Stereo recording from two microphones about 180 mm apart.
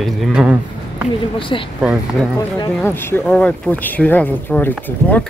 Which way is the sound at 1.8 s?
5° right (ahead or behind).